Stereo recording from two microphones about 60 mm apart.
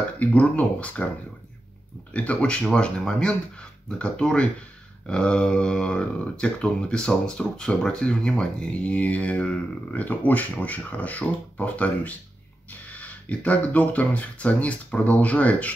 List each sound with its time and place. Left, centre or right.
0.2 s speech: left
2.1 s speech: left